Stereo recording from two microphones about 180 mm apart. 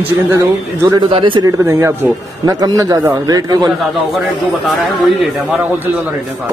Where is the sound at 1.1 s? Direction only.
25° right (ahead or behind).